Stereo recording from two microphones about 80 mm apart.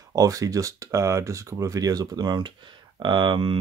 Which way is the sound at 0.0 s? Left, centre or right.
Right.